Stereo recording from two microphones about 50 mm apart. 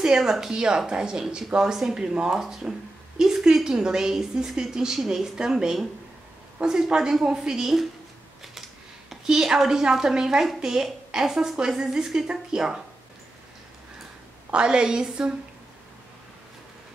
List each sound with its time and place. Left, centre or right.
0.0 s a woman's voice: centre
9.1 s a woman's voice: centre
14.5 s a woman's voice: centre